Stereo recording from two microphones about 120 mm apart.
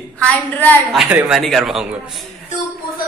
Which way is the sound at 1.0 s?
15° right (ahead or behind).